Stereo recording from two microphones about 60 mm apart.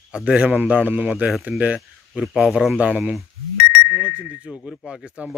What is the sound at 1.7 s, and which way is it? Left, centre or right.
Speech, centre.